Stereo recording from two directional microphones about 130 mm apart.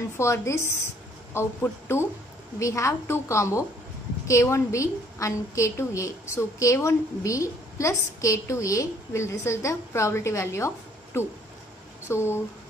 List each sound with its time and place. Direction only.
0.2 s a woman's voice: 20° left (ahead or behind)
12.1 s a woman's voice: 20° left (ahead or behind)